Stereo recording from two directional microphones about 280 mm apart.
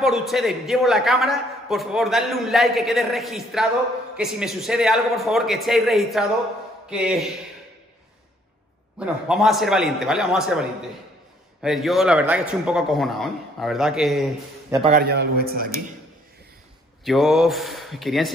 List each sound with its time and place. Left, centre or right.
0.0 s a man's voice: centre
9.0 s a man's voice: centre
11.6 s a man's voice: centre
14.9 s a man's voice: right
17.0 s a man's voice: centre